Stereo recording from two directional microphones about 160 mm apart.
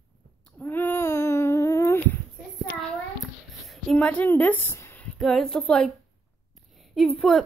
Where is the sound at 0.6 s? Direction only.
10° left (ahead or behind).